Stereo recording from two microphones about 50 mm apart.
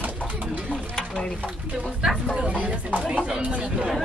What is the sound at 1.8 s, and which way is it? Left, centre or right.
Speech, centre.